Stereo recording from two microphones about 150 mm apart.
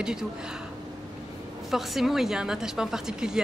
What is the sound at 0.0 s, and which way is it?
Speech, 5° right (ahead or behind).